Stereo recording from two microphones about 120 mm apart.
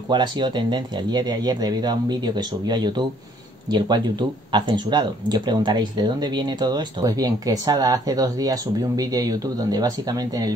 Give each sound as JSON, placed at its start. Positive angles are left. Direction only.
{"t": 0.1, "sound": "speech", "side_deg": -40}